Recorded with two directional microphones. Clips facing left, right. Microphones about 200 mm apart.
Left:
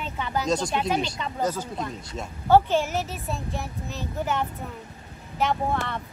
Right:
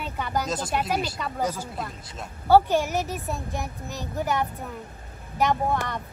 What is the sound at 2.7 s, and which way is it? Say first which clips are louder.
A child's voice: right 1 dB; 15° right (ahead or behind).